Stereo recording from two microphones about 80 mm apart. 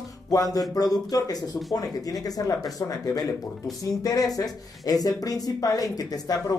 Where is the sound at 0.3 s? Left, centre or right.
Left.